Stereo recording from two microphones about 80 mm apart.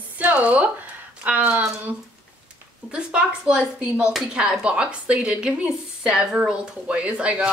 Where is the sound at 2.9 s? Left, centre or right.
Centre.